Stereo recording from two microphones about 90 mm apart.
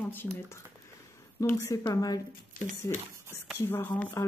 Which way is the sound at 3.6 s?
25° left (ahead or behind).